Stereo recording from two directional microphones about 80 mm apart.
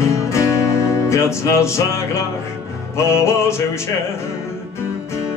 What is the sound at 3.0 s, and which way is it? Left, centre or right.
Music, left.